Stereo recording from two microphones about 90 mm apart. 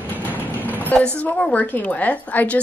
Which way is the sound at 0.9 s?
15° left (ahead or behind).